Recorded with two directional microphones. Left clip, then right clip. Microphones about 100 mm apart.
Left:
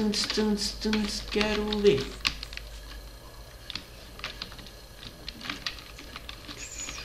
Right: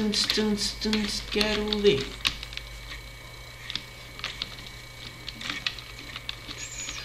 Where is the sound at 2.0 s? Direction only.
20° left (ahead or behind).